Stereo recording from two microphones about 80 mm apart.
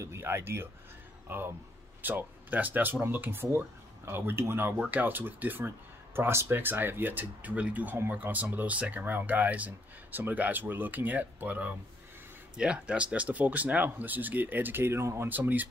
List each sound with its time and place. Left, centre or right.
0.0 s speech: right
12.5 s speech: centre